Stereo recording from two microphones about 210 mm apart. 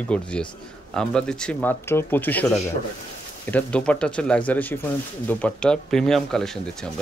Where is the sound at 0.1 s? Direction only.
5° left (ahead or behind).